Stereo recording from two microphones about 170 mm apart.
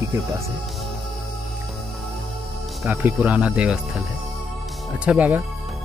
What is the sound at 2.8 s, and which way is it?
Speech, 10° right (ahead or behind).